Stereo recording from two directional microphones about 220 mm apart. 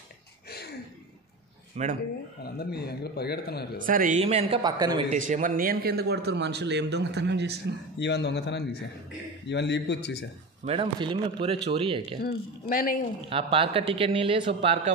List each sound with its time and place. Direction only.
0.5 s a sound: 45° left (ahead or behind)
1.8 s a man's voice: 30° right (ahead or behind)
2.4 s a man's voice: 45° left (ahead or behind)
3.7 s a man's voice: 40° right (ahead or behind); by 5.0 s 20° right (ahead or behind)
5.1 s a man's voice: 35° right (ahead or behind); by 7.5 s 50° right (ahead or behind)
8.0 s a man's voice: 50° left (ahead or behind)
10.6 s a man's voice: 25° right (ahead or behind)
12.2 s speech: 40° left (ahead or behind)
13.3 s a man's voice: 25° right (ahead or behind)